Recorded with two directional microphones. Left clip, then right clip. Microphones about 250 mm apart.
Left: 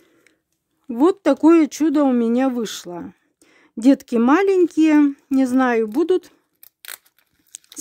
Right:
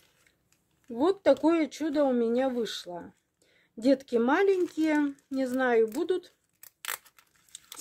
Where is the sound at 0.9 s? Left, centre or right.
Left.